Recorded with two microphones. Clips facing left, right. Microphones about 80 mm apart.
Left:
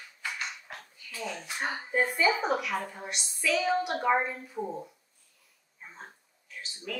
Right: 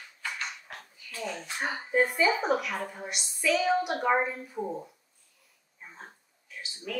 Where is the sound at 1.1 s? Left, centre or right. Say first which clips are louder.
Right 1 dB; centre.